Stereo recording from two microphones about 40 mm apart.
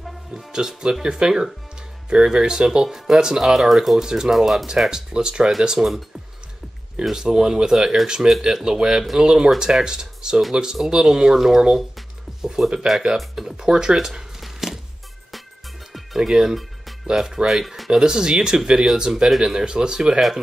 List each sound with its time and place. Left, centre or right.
0.5 s speech: centre
4.0 s speech: centre
4.3 s speech: centre
4.9 s speech: right
7.1 s speech: centre
13.9 s a sound: centre
16.2 s speech: centre
16.5 s music: centre
17.5 s speech: centre